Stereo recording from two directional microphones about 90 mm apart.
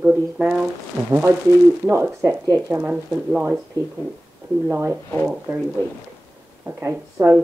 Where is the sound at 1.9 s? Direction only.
30° right (ahead or behind).